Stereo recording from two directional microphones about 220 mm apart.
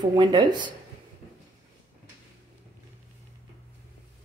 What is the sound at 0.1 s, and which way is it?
Speech, 20° right (ahead or behind).